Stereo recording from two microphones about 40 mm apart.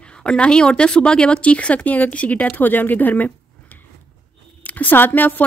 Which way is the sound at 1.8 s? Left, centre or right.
Left.